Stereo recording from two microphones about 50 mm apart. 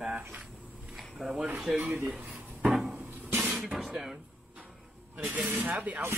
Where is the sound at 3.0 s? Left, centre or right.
Right.